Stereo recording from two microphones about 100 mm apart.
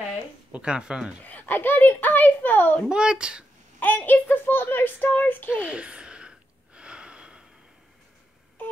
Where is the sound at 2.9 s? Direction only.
10° right (ahead or behind).